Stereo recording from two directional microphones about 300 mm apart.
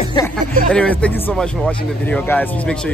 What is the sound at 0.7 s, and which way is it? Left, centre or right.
Speech, centre.